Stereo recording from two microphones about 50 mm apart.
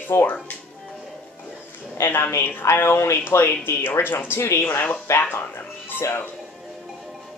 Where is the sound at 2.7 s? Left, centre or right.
Left.